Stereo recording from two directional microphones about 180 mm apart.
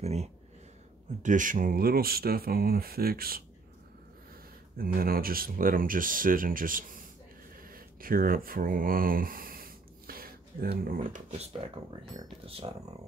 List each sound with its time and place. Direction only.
0.0 s speech: 35° right (ahead or behind); by 3.4 s 55° right (ahead or behind)
4.7 s speech: 55° right (ahead or behind); by 12.7 s 30° right (ahead or behind)